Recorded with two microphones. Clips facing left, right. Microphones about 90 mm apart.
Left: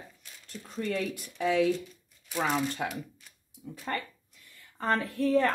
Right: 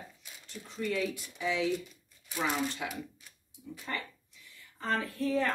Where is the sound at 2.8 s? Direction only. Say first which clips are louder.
Left 4 dB; 50° left (ahead or behind).